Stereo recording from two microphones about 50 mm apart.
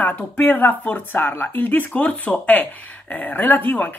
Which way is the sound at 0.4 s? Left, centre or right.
Left.